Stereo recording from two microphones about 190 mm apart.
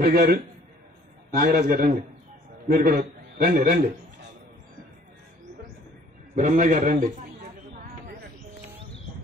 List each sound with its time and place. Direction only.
0.0 s a man's voice: 60° right (ahead or behind)
1.5 s a man's voice: 50° right (ahead or behind)
6.3 s a man's voice: 40° right (ahead or behind)